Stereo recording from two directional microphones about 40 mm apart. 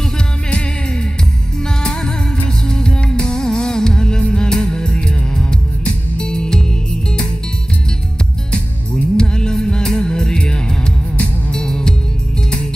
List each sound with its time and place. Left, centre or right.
2.7 s music: centre
6.1 s music: centre
8.5 s music: left